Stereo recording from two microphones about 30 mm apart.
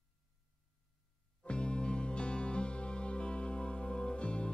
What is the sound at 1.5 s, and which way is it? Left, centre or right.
Music, left.